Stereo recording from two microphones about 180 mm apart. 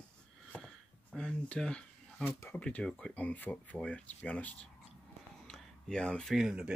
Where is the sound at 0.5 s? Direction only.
5° left (ahead or behind).